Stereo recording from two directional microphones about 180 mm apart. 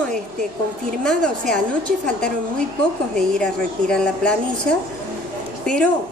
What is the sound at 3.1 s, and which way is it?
Speech, 5° left (ahead or behind).